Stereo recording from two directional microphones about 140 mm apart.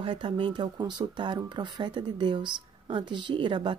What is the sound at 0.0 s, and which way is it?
Speech, 35° right (ahead or behind).